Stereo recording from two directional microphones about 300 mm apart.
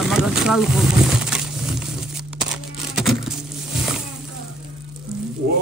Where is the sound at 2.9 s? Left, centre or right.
Centre.